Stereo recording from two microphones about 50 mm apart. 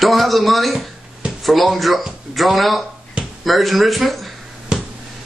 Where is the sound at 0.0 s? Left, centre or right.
Centre.